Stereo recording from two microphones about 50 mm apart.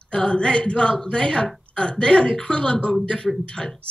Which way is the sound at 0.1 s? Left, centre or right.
Centre.